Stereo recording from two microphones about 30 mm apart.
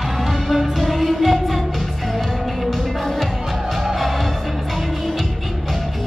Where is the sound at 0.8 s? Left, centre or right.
Centre.